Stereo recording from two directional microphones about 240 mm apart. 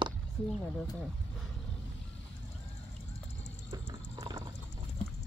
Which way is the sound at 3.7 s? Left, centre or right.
Centre.